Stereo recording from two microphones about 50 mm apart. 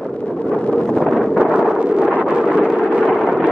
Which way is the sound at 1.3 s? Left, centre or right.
Centre.